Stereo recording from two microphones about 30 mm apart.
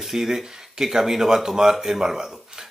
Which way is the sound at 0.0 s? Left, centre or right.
Centre.